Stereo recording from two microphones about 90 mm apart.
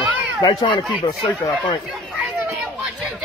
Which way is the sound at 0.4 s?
50° left (ahead or behind).